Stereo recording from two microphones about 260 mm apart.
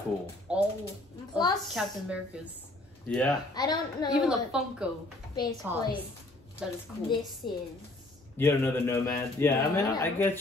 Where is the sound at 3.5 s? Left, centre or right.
Centre.